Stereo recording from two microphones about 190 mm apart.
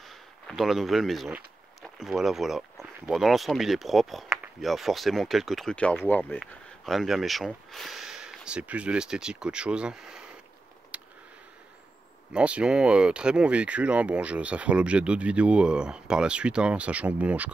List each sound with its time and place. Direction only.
0.0 s speech: centre (ahead or behind)
10.9 s a sound: 5° right (ahead or behind)
12.3 s speech: 5° right (ahead or behind)